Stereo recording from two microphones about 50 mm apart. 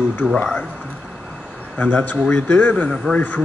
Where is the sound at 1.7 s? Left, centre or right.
Left.